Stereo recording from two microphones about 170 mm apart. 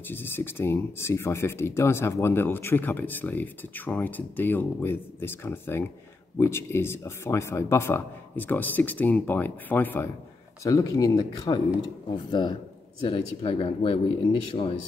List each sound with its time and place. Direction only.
0.1 s speech: 10° left (ahead or behind); by 14.7 s 35° left (ahead or behind)